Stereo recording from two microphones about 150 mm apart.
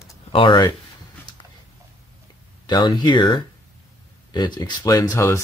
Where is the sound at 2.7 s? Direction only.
30° left (ahead or behind).